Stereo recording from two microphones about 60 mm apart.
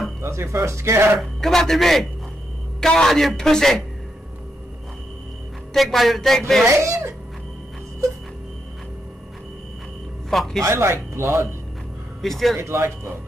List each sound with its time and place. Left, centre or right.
0.2 s speech: right
1.4 s a man's voice: centre
5.7 s a man's voice: centre
6.8 s speech: right
10.3 s a man's voice: centre
10.6 s speech: right
12.2 s a man's voice: centre
12.5 s speech: right